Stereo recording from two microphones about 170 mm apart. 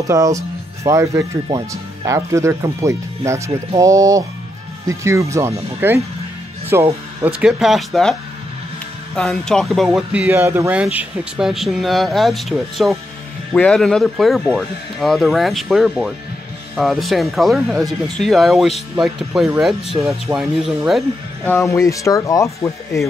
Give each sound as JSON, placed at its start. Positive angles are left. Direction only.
{"t": 0.1, "sound": "speech", "side_deg": -20}
{"t": 21.5, "sound": "speech", "side_deg": 15}